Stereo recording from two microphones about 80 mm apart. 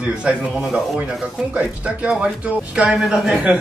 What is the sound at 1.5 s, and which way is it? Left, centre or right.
A man's voice, centre.